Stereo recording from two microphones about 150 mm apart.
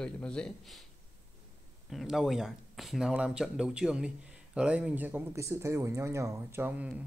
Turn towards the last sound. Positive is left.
turn(degrees=-10)  # may be behind; listen again after turning